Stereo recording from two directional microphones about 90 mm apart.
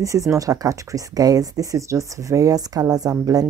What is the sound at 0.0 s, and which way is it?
Speech, 35° right (ahead or behind).